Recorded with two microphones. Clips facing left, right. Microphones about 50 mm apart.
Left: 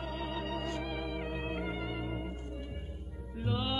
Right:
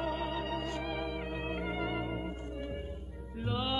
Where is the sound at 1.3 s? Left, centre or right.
Centre.